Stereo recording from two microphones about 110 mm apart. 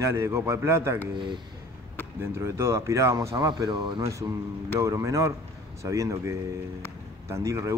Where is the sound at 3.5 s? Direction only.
45° right (ahead or behind).